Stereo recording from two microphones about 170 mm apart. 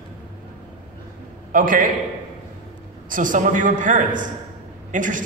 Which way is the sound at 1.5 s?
55° right (ahead or behind).